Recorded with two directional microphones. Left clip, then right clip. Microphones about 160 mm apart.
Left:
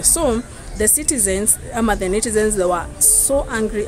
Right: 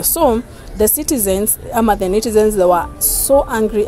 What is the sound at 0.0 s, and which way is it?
A woman's voice, 25° right (ahead or behind).